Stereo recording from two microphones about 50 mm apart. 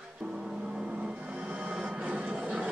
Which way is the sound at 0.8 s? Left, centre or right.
Centre.